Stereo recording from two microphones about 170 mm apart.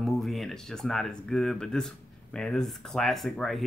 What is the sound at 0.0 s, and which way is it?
Speech, centre (ahead or behind).